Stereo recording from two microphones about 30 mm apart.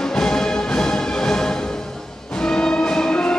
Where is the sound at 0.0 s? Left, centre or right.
Left.